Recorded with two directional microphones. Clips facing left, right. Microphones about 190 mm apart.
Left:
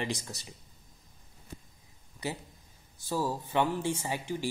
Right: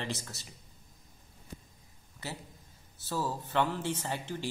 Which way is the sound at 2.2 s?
15° left (ahead or behind).